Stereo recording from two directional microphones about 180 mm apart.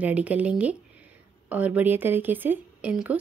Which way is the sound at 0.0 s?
10° right (ahead or behind).